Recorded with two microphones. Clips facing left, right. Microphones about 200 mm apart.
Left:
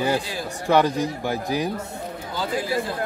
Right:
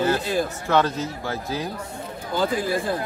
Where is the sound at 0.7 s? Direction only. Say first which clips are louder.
Left 5 dB; 15° left (ahead or behind).